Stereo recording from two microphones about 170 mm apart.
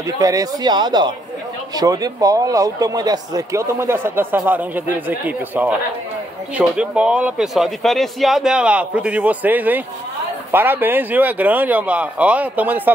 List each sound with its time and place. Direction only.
0.2 s speech: 20° right (ahead or behind)